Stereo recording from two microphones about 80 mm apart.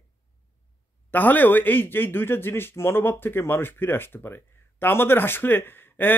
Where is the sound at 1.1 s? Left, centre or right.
Left.